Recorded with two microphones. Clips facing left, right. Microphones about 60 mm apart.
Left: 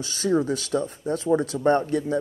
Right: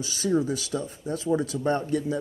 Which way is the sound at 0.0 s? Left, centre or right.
Left.